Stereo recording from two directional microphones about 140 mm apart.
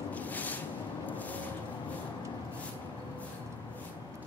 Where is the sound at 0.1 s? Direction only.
10° left (ahead or behind).